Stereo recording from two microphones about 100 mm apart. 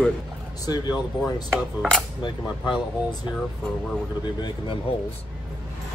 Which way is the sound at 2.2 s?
50° left (ahead or behind).